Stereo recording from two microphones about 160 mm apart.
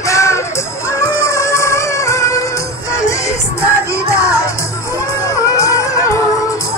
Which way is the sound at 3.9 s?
20° left (ahead or behind).